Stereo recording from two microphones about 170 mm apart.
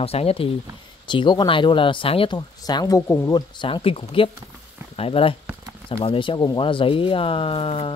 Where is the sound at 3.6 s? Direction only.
30° left (ahead or behind).